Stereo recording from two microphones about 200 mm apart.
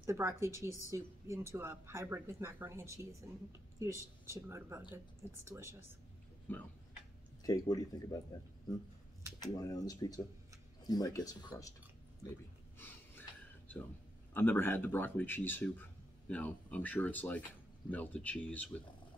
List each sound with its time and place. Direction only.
0.0 s speech: 15° right (ahead or behind)
6.5 s speech: 10° left (ahead or behind)
9.4 s speech: 20° left (ahead or behind)
12.7 s a sound: 10° left (ahead or behind)
14.3 s speech: 10° left (ahead or behind)